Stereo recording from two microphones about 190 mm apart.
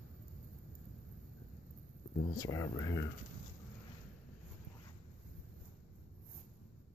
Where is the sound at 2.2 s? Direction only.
20° left (ahead or behind).